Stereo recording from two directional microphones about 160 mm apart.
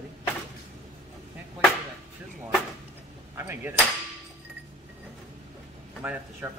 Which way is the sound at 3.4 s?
15° right (ahead or behind).